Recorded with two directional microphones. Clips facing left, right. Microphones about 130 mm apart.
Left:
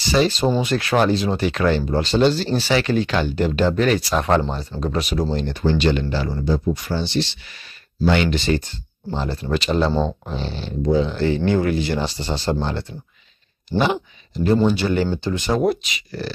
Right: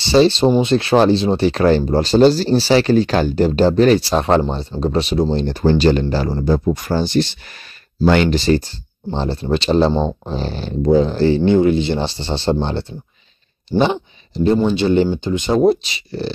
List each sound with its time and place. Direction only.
0.0 s speech: 30° right (ahead or behind)
6.5 s speech: 50° right (ahead or behind); by 9.9 s 30° right (ahead or behind)
9.9 s speech: 20° right (ahead or behind)
10.3 s speech: 45° right (ahead or behind); by 16.3 s 25° right (ahead or behind)